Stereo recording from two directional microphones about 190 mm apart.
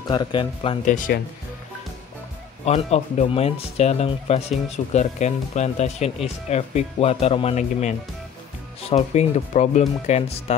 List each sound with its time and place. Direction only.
0.1 s speech: 25° left (ahead or behind)
0.8 s speech: 45° left (ahead or behind)
2.6 s speech: 35° left (ahead or behind)